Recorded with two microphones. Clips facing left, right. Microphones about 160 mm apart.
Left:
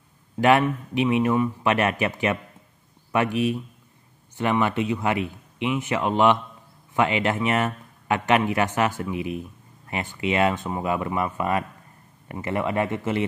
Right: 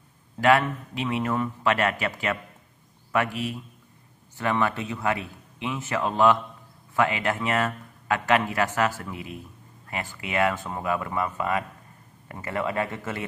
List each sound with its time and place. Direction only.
0.4 s a man's voice: 20° left (ahead or behind)